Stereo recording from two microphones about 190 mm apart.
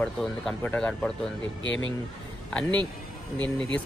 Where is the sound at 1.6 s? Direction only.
75° left (ahead or behind).